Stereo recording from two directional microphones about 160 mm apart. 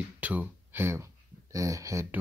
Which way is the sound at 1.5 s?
20° right (ahead or behind).